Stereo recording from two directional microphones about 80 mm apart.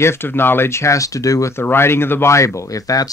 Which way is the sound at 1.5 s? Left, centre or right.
Left.